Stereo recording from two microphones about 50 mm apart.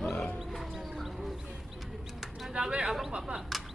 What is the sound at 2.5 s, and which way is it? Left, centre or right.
Speech, centre.